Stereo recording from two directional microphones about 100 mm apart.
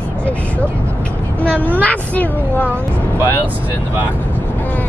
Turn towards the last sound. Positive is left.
turn(degrees=-20)  # may be behind; listen again after turning